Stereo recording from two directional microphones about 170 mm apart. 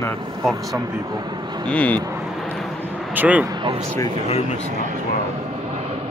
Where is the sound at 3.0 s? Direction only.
10° right (ahead or behind).